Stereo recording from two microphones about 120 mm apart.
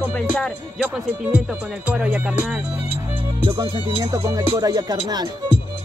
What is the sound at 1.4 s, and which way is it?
Speech, 10° right (ahead or behind).